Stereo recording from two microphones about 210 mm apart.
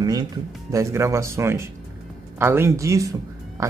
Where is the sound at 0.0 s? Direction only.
20° right (ahead or behind).